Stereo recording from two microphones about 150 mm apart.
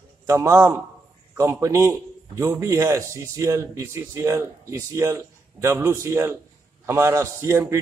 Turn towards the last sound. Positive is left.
turn(degrees=-20)  # may be behind; listen again after turning